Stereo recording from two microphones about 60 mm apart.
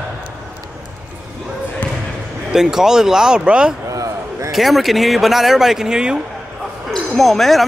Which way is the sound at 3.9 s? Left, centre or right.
Right.